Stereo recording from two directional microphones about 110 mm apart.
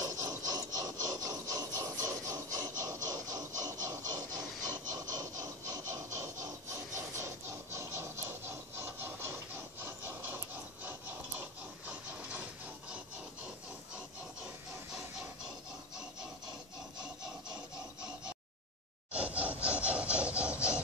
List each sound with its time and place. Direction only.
0.0 s scratch: 30° right (ahead or behind)
6.1 s a sound: 30° right (ahead or behind)
9.8 s pant: 20° right (ahead or behind)
19.1 s sawing: 15° right (ahead or behind)